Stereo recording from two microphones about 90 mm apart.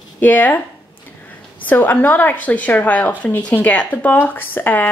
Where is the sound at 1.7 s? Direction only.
20° left (ahead or behind).